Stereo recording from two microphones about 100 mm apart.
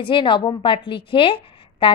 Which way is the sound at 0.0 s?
55° left (ahead or behind).